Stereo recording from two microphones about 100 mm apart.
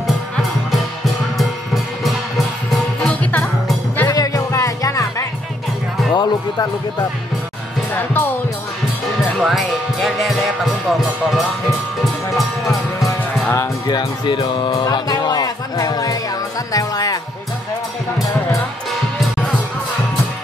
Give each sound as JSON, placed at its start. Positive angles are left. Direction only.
{"t": 1.7, "sound": "music", "side_deg": 0}
{"t": 3.0, "sound": "music", "side_deg": 10}
{"t": 4.1, "sound": "music", "side_deg": 35}
{"t": 6.1, "sound": "speech", "side_deg": 45}
{"t": 7.9, "sound": "speech", "side_deg": 20}
{"t": 9.3, "sound": "speech", "side_deg": 0}
{"t": 13.0, "sound": "music", "side_deg": 30}
{"t": 13.8, "sound": "speech", "side_deg": 50}
{"t": 14.9, "sound": "music", "side_deg": 40}
{"t": 16.7, "sound": "speech", "side_deg": 40}